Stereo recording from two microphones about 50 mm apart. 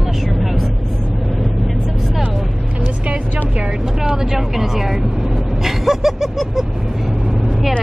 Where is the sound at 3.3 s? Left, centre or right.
Right.